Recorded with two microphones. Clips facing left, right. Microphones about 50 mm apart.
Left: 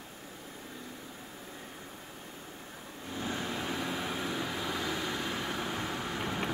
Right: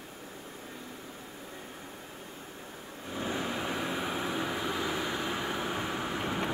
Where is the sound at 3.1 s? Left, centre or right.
Centre.